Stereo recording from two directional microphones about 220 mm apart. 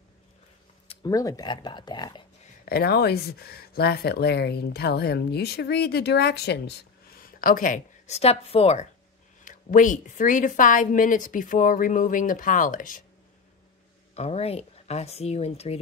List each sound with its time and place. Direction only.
0.8 s speech: 15° left (ahead or behind)
2.6 s a woman's voice: 45° left (ahead or behind)
14.1 s speech: 30° left (ahead or behind)